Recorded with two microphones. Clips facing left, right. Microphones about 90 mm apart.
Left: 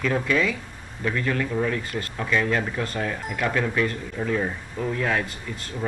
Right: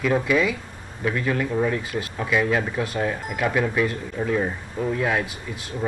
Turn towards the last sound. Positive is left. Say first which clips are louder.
# right 2 dB
turn(degrees=-5)  # may be behind; listen again after turning